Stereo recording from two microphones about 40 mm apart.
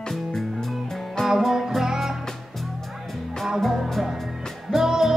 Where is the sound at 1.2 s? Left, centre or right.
Centre.